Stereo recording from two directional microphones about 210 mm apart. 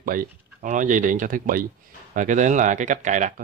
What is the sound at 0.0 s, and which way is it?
Speech, 40° right (ahead or behind).